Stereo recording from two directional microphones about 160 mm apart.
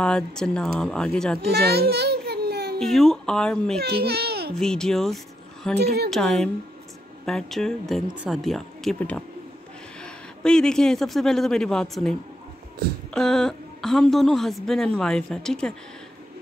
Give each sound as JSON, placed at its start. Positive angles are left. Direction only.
{"t": 0.0, "sound": "a man's voice", "side_deg": 5}
{"t": 1.5, "sound": "a sound", "side_deg": -80}
{"t": 2.8, "sound": "a man's voice", "side_deg": 0}
{"t": 3.8, "sound": "speech", "side_deg": -85}
{"t": 4.6, "sound": "speech", "side_deg": 5}
{"t": 5.8, "sound": "speech", "side_deg": -80}
{"t": 6.0, "sound": "a man's voice", "side_deg": 5}